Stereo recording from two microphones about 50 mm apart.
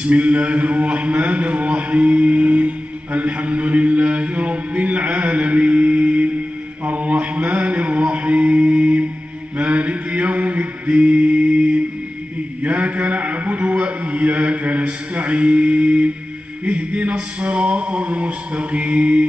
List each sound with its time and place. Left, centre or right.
0.0 s a man's voice: right
6.8 s mantra: right
12.6 s a sound: right